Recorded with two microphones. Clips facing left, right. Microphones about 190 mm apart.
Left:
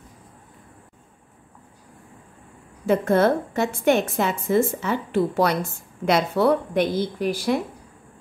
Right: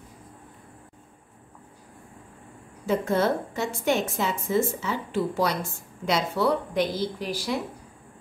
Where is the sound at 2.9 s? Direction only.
60° left (ahead or behind).